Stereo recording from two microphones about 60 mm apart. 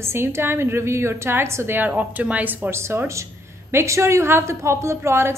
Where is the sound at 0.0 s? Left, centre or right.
Right.